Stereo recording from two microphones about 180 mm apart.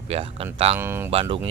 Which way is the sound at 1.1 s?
30° right (ahead or behind).